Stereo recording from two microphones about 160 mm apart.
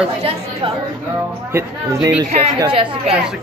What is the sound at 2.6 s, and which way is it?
Speech, 35° right (ahead or behind).